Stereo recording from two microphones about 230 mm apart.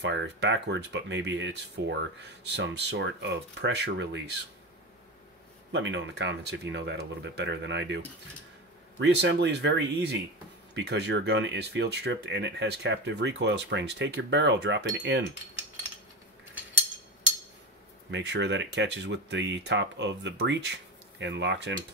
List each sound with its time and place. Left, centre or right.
0.0 s speech: right
5.7 s speech: right
9.0 s speech: right
18.1 s speech: right